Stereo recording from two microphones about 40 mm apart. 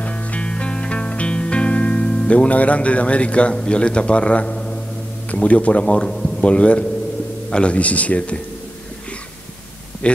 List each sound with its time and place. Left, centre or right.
0.0 s music: left
2.0 s a man's voice: left
10.0 s a man's voice: left